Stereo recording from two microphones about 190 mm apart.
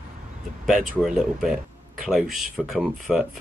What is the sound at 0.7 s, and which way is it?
Speech, centre (ahead or behind).